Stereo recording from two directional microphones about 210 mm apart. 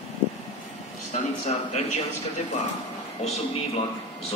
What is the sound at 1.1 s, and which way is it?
Speech, 35° left (ahead or behind).